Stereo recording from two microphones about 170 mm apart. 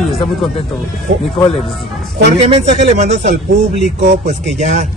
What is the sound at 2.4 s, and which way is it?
A man's voice, 40° right (ahead or behind).